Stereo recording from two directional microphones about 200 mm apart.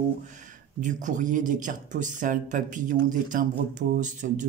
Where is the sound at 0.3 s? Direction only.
40° right (ahead or behind).